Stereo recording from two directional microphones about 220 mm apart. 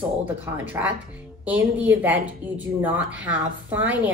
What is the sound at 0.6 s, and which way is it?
A woman's voice, 10° right (ahead or behind).